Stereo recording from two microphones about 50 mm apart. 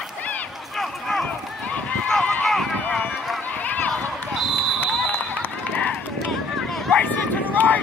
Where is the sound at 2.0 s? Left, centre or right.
Centre.